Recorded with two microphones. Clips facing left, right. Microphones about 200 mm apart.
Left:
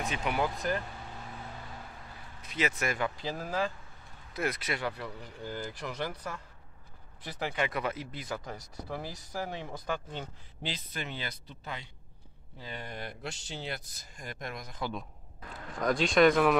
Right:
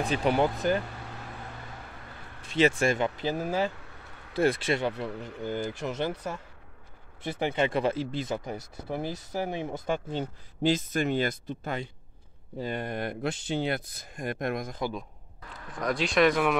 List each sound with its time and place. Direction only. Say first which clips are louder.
0.0 s speech: right 7 dB; 35° right (ahead or behind)
2.4 s speech: right 8 dB; 30° right (ahead or behind)
3.2 s speech: right 7 dB; 70° right (ahead or behind)
3.8 s vehicle: right 6 dB; 70° right (ahead or behind)
4.3 s speech: right 8 dB; 30° right (ahead or behind)
5.0 s speech: right 7 dB; 70° right (ahead or behind)
5.8 s speech: right 6 dB; 25° right (ahead or behind)
10.6 s speech: right 13 dB; 45° right (ahead or behind)
15.8 s speech: even; centre (ahead or behind)